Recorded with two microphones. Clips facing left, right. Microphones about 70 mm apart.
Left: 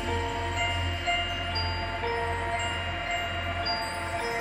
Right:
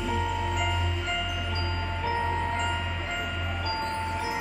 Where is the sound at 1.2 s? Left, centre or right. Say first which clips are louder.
Even; left.